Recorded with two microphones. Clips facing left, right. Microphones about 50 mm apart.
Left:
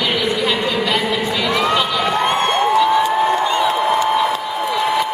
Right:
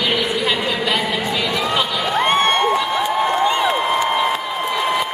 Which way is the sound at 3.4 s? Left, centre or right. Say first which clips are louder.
Even; right.